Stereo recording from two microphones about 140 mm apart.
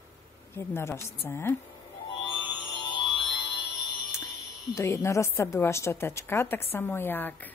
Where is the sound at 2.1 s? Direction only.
35° left (ahead or behind).